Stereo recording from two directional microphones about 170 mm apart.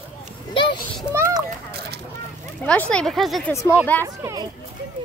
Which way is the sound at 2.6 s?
10° left (ahead or behind).